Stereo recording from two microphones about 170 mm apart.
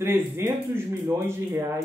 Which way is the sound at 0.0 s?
15° right (ahead or behind).